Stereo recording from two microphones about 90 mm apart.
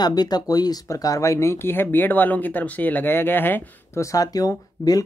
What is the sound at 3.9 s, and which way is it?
Speech, 40° left (ahead or behind).